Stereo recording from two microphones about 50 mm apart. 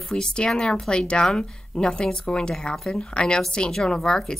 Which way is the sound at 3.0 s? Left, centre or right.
Centre.